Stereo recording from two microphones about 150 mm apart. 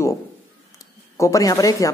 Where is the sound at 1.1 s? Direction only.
20° left (ahead or behind).